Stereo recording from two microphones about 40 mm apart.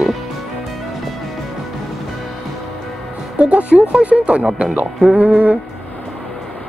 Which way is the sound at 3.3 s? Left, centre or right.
Right.